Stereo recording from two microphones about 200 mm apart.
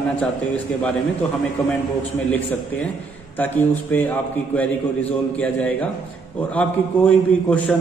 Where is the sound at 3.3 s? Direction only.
10° left (ahead or behind).